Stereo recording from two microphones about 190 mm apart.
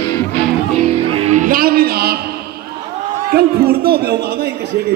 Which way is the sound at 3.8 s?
55° right (ahead or behind).